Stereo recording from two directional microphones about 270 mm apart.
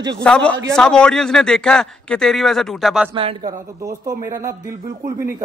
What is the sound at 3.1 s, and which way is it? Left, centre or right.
Speech, right.